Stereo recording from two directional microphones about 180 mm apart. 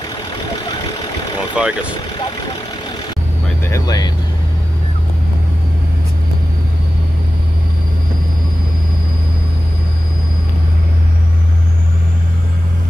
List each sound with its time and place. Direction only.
1.5 s speech: 5° right (ahead or behind)
3.6 s speech: 20° left (ahead or behind)